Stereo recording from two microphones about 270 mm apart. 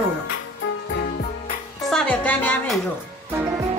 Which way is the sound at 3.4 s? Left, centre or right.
Centre.